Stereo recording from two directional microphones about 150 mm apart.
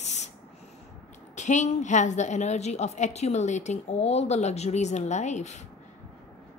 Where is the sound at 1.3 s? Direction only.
50° left (ahead or behind).